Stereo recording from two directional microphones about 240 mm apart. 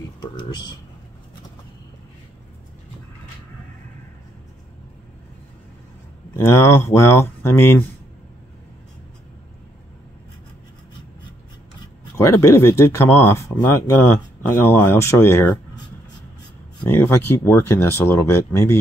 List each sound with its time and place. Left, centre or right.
0.2 s speech: centre
6.3 s speech: centre
12.2 s speech: centre
16.8 s speech: centre